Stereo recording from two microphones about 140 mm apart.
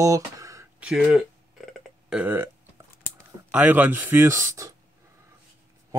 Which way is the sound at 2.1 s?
15° right (ahead or behind).